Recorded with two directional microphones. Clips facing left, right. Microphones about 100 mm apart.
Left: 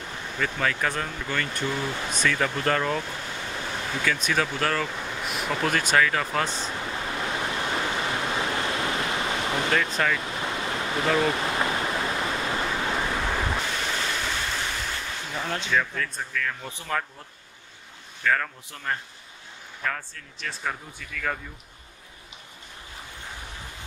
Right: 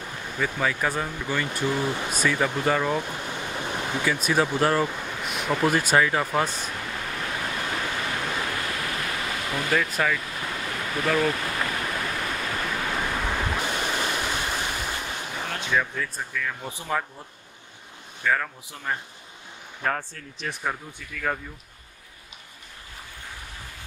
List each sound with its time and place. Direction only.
0.3 s speech: 10° right (ahead or behind)
4.9 s speech: centre (ahead or behind)
5.6 s speech: 15° right (ahead or behind)
6.7 s waves: 20° left (ahead or behind)
11.1 s pink noise: 25° left (ahead or behind)
13.0 s waves: 5° right (ahead or behind)
13.6 s ocean: 15° right (ahead or behind)
15.6 s speech: 10° right (ahead or behind)
18.2 s speech: 5° right (ahead or behind)
19.8 s speech: 40° right (ahead or behind)
20.3 s speech: 15° right (ahead or behind)